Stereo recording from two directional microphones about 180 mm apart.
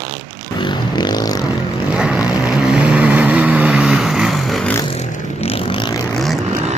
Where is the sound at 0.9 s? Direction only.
25° left (ahead or behind).